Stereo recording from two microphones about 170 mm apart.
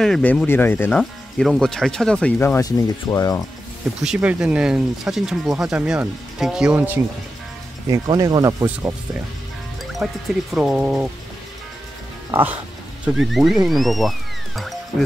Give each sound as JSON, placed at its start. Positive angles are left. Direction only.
{"t": 0.0, "sound": "speech", "side_deg": 5}
{"t": 4.0, "sound": "speech", "side_deg": -5}
{"t": 7.9, "sound": "speech", "side_deg": -20}
{"t": 10.0, "sound": "speech", "side_deg": -5}
{"t": 12.3, "sound": "speech", "side_deg": -10}